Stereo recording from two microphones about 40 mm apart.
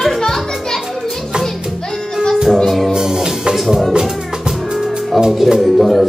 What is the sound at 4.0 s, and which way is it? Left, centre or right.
Music, centre.